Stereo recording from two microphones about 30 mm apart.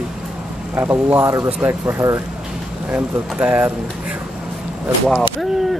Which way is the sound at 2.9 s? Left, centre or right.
Right.